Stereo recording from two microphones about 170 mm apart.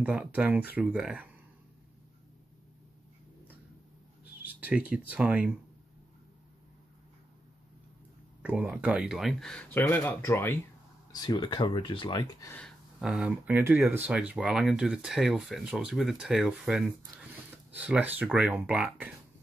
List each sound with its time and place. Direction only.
0.0 s speech: 10° right (ahead or behind)
4.5 s speech: 10° right (ahead or behind)
8.4 s speech: 10° right (ahead or behind); by 10.6 s 15° left (ahead or behind)
11.1 s speech: 25° left (ahead or behind)
12.5 s speech: centre (ahead or behind)